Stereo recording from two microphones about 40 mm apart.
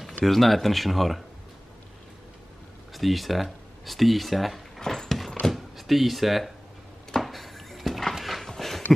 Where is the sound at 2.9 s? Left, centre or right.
Centre.